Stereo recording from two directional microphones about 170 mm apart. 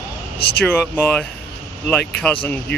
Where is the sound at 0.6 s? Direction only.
10° left (ahead or behind).